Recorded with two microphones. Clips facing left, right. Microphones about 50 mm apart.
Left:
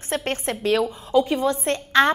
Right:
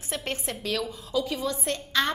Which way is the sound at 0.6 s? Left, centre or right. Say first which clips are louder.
Left 9 dB; left.